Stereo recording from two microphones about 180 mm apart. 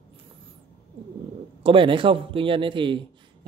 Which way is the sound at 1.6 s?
30° right (ahead or behind).